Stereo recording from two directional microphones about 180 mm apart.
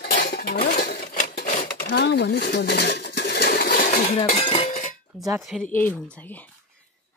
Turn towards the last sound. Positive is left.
turn(degrees=10)  # may be behind; listen again after turning